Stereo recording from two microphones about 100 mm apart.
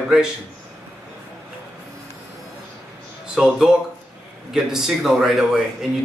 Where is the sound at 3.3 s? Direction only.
5° right (ahead or behind).